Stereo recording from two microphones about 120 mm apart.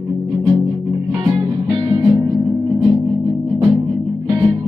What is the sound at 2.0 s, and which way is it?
Music, 20° right (ahead or behind).